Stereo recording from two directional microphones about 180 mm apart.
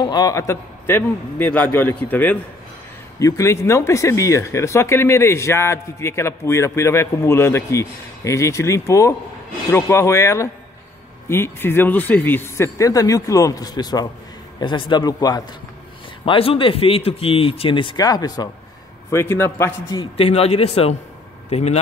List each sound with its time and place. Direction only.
0.0 s speech: 20° left (ahead or behind)
20.0 s a man's voice: 30° left (ahead or behind)